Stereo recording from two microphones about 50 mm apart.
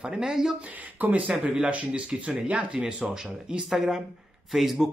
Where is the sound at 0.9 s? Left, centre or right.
Right.